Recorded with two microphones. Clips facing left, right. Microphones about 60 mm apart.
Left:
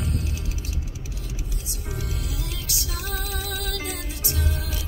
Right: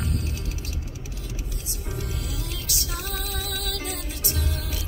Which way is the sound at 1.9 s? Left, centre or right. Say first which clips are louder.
Even; centre.